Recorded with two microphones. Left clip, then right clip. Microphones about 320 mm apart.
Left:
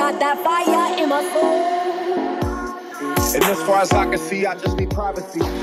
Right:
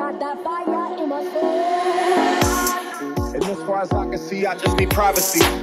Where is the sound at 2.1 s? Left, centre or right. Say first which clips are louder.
Right 5 dB; right.